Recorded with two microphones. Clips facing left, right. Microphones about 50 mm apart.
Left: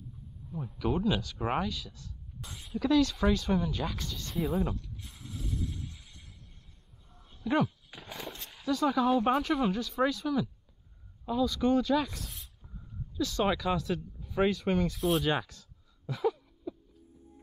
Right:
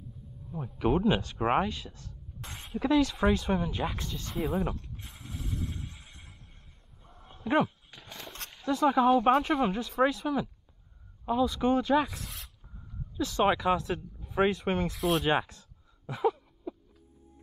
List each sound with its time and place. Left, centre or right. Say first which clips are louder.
0.7 s speech: right 4 dB; right
2.7 s speech: even; right
4.7 s neigh: even; right
7.1 s a sound: right 1 dB; right
7.9 s a sound: left 3 dB; centre
8.6 s speech: right 3 dB; right
9.1 s speech: right 4 dB; centre
9.4 s speech: right 1 dB; right
16.1 s a sound: right 2 dB; right